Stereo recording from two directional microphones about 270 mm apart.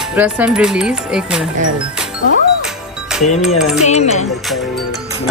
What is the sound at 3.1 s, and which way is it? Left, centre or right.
Music, centre.